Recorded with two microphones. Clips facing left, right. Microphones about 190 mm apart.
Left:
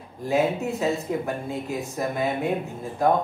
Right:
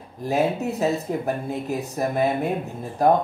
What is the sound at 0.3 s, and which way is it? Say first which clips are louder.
Speech: even; 40° right (ahead or behind).